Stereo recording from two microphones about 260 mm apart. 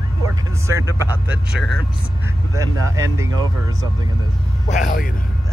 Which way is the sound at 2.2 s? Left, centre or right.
Centre.